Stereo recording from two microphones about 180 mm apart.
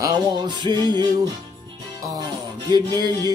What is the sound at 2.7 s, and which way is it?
Speech, 20° right (ahead or behind).